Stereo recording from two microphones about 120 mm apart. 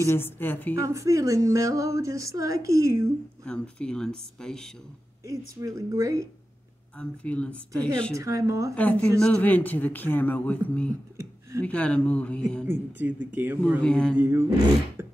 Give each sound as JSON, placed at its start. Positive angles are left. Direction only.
{"t": 0.0, "sound": "speech", "side_deg": 20}
{"t": 0.8, "sound": "a woman's voice", "side_deg": -25}
{"t": 3.4, "sound": "speech", "side_deg": 10}
{"t": 5.2, "sound": "a woman's voice", "side_deg": -25}
{"t": 7.0, "sound": "speech", "side_deg": 10}
{"t": 8.2, "sound": "a woman's voice", "side_deg": -25}
{"t": 8.7, "sound": "speech", "side_deg": 10}
{"t": 12.6, "sound": "speech", "side_deg": -15}
{"t": 13.8, "sound": "speech", "side_deg": 5}
{"t": 14.2, "sound": "a woman's voice", "side_deg": -20}